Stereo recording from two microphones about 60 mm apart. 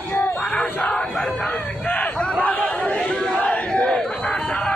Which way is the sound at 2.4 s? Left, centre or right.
Left.